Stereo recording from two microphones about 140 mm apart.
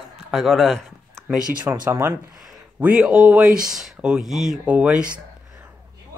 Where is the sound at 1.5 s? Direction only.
10° right (ahead or behind).